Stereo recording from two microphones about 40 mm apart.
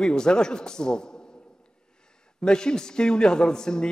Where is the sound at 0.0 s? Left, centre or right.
Centre.